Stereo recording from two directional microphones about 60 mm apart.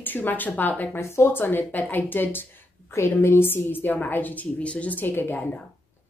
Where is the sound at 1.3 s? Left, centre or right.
Left.